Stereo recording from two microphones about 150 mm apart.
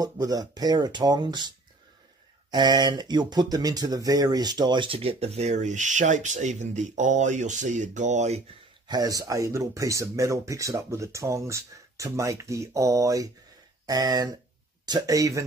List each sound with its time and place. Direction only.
0.0 s speech: 25° right (ahead or behind)
2.5 s speech: 30° right (ahead or behind); by 8.4 s 50° right (ahead or behind)
8.8 s speech: 25° right (ahead or behind)